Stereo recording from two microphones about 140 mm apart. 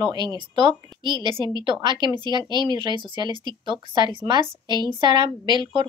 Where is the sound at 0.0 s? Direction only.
30° right (ahead or behind).